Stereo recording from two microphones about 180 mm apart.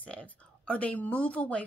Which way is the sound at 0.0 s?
5° left (ahead or behind).